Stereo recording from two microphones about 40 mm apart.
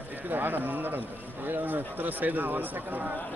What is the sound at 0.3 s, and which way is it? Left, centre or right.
Speech, right.